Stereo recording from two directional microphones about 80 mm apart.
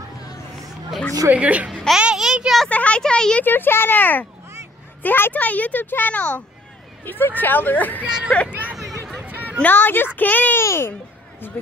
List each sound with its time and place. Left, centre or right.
1.3 s a woman's voice: centre
2.7 s speech: centre
3.4 s a child's voice: left
8.0 s a woman's voice: centre
8.5 s hubbub: right
9.2 s a sound: centre
9.6 s a child's voice: left
10.6 s a sound: left